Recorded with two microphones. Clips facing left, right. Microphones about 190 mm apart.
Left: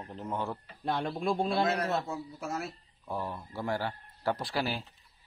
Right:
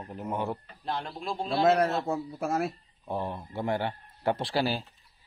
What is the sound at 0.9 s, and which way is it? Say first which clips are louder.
Speech: left 3 dB; 50° left (ahead or behind).